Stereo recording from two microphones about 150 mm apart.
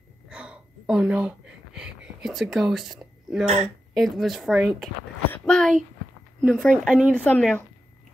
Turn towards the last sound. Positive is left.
turn(degrees=10)  # may be behind; listen again after turning